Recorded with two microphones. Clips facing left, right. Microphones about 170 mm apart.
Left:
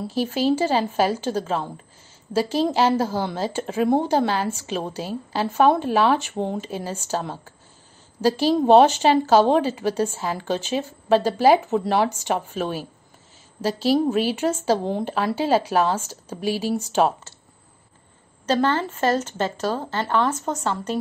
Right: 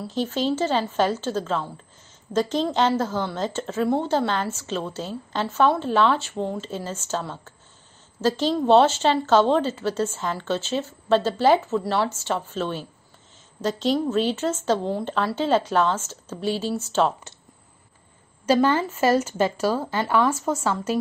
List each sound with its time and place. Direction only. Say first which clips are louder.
0.1 s a woman's voice: left 3 dB; 10° left (ahead or behind)
18.4 s a woman's voice: right 2 dB; 10° right (ahead or behind)